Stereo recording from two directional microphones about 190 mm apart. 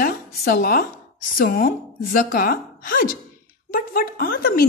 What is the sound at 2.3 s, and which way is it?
A woman's voice, 50° left (ahead or behind).